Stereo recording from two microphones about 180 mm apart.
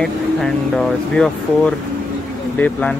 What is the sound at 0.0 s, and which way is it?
Speech, centre (ahead or behind).